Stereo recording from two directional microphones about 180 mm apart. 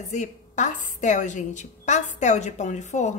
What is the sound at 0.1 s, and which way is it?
A woman's voice, 40° left (ahead or behind).